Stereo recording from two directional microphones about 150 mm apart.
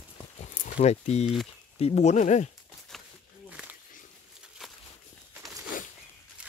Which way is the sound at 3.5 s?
10° right (ahead or behind).